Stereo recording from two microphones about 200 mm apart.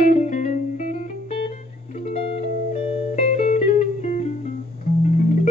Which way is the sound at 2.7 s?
35° left (ahead or behind).